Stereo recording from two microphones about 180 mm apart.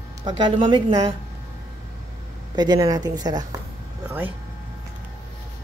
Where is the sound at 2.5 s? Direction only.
20° right (ahead or behind).